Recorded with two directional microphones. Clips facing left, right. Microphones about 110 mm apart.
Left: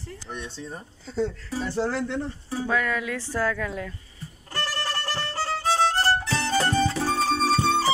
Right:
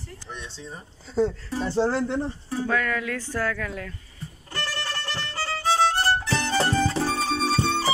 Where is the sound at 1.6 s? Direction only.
30° right (ahead or behind).